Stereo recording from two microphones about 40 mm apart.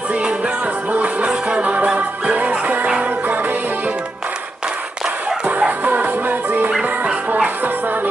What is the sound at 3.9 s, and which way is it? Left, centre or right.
Music, right.